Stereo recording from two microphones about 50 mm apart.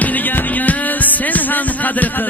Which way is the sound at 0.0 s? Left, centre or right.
Left.